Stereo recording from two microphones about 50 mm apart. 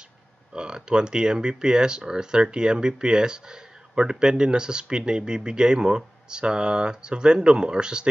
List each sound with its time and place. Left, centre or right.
0.5 s speech: centre